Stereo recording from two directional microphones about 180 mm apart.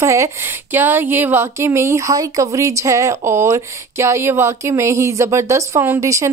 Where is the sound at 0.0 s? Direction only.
15° right (ahead or behind).